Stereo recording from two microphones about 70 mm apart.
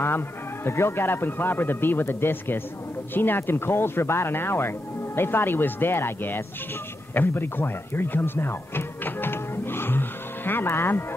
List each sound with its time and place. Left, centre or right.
0.7 s speech: left
7.2 s music: left